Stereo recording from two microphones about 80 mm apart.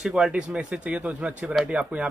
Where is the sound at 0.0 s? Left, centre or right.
Centre.